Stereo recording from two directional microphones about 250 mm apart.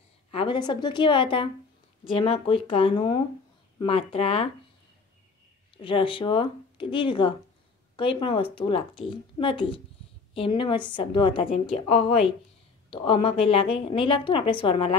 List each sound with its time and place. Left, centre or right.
0.3 s a woman's voice: left
5.8 s a woman's voice: centre